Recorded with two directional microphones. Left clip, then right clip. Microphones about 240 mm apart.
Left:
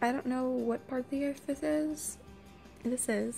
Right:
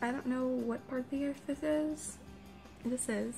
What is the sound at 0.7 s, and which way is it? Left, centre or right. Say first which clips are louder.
Speech: left 4 dB; left.